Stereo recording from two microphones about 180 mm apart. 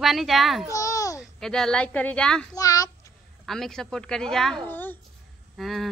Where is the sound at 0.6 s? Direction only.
15° left (ahead or behind).